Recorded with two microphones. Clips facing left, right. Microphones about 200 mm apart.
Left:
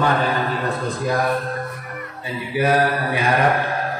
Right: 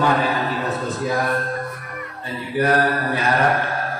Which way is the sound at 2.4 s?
10° left (ahead or behind).